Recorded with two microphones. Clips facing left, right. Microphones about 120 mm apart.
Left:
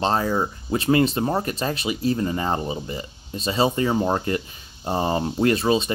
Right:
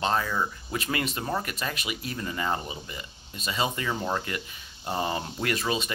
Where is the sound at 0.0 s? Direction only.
35° left (ahead or behind).